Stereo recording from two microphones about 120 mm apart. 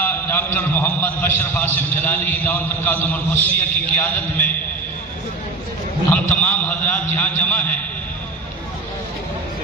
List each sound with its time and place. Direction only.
0.0 s a man's voice: 15° left (ahead or behind)
6.0 s a man's voice: 10° left (ahead or behind)